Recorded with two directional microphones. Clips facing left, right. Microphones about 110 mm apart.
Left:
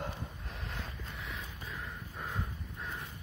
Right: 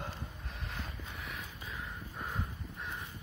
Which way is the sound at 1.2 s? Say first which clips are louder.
Left 1 dB; 25° right (ahead or behind).